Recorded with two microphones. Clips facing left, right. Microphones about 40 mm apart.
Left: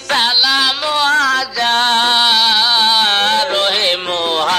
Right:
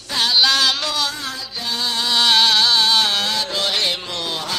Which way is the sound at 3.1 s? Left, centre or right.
Left.